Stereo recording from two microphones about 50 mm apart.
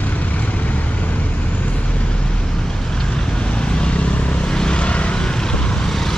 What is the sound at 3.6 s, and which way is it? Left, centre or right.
Vehicle, centre.